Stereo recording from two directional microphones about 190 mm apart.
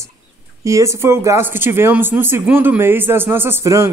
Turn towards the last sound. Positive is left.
turn(degrees=-15)  # may be behind; listen again after turning